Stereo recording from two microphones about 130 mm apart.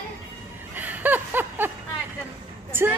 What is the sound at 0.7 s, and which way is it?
Snicker, 15° right (ahead or behind).